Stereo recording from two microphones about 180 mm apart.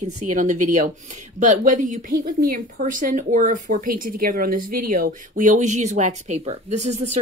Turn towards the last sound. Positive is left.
turn(degrees=-40)  # may be behind; listen again after turning